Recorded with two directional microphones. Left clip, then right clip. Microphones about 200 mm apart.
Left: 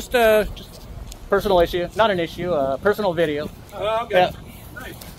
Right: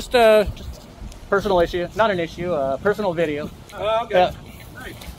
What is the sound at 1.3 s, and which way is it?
Speech, centre (ahead or behind).